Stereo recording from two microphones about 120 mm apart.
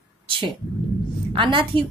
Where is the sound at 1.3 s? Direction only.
45° right (ahead or behind).